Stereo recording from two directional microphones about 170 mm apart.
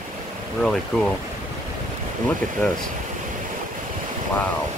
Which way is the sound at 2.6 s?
10° left (ahead or behind).